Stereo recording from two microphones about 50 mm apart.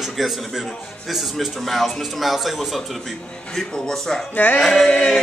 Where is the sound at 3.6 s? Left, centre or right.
Centre.